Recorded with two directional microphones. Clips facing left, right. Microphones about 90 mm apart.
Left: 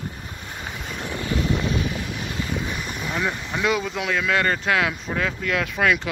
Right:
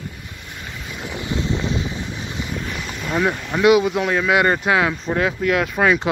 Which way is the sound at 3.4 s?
5° right (ahead or behind).